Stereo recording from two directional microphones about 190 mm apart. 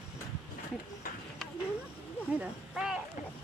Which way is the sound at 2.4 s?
5° right (ahead or behind).